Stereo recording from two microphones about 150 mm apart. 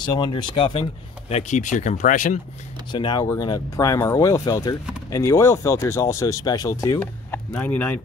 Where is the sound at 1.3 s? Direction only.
50° left (ahead or behind).